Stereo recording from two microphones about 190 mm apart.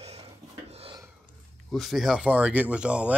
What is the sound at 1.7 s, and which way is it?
Speech, centre (ahead or behind).